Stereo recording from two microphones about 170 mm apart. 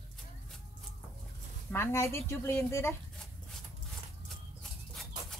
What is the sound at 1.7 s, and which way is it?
Speech, 15° left (ahead or behind).